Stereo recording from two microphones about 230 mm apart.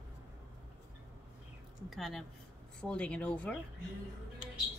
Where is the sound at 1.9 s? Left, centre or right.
Centre.